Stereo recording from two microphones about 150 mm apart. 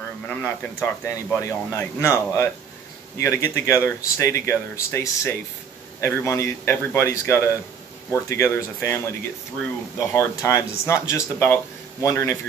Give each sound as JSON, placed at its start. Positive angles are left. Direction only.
{"t": 0.3, "sound": "a man's voice", "side_deg": 15}